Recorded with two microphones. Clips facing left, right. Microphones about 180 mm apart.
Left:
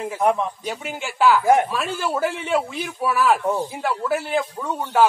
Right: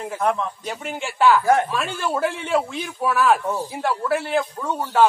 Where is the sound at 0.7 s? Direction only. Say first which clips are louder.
Even; centre (ahead or behind).